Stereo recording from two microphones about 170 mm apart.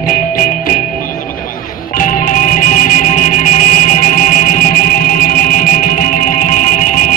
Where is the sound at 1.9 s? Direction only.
50° left (ahead or behind).